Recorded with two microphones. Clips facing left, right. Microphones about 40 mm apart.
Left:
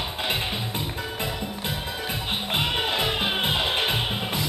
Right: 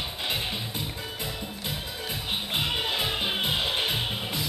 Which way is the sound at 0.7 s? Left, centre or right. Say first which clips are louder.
Left 4 dB; left.